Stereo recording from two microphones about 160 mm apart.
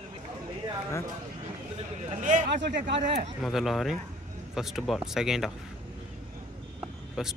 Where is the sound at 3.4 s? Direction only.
Centre (ahead or behind).